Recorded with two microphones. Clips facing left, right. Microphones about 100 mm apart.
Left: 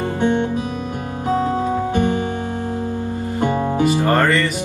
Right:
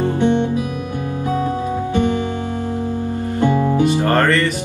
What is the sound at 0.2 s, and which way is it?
Music, 20° right (ahead or behind).